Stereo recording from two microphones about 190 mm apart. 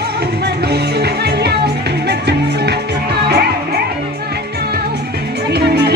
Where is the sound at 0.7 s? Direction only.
60° right (ahead or behind).